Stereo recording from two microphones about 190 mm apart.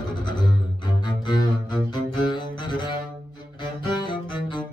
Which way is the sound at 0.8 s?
25° left (ahead or behind).